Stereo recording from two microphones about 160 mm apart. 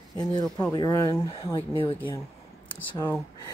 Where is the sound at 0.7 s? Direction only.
25° left (ahead or behind).